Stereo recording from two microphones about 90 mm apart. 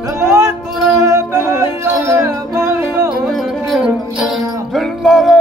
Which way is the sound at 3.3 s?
Centre (ahead or behind).